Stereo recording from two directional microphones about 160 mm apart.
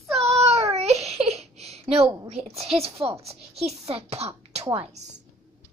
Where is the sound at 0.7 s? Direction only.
40° right (ahead or behind).